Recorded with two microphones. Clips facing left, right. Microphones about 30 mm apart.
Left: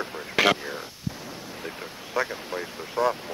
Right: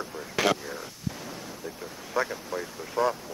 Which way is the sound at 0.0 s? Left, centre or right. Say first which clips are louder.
Left 4 dB; left.